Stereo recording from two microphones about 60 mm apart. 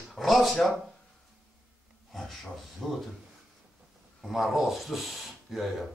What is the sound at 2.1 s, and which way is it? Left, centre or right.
Speech, centre.